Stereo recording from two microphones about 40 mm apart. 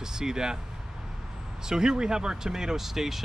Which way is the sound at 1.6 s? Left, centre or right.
Centre.